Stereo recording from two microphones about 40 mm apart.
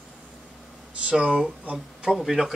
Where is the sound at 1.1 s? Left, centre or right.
Right.